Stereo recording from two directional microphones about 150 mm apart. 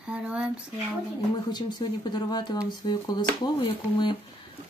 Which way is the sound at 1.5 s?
30° left (ahead or behind).